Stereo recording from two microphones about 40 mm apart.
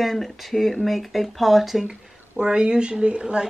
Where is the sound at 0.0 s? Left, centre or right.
Centre.